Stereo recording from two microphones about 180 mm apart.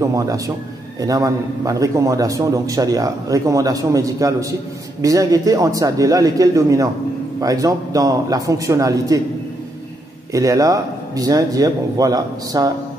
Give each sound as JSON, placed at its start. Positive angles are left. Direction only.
{"t": 0.0, "sound": "a man's voice", "side_deg": -20}
{"t": 10.3, "sound": "a man's voice", "side_deg": -20}